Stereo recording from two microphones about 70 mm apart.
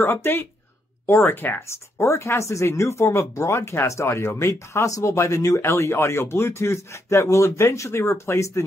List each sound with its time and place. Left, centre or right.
0.0 s speech: left